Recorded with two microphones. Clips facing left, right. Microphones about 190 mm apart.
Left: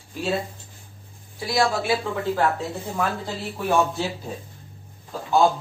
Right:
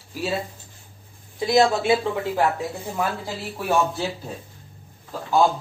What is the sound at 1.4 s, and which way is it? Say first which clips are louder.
Speech: right 4 dB; 20° right (ahead or behind).